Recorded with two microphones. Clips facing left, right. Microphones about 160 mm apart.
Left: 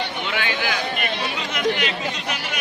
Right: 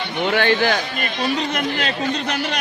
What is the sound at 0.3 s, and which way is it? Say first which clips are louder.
Speech: right 10 dB; 50° right (ahead or behind).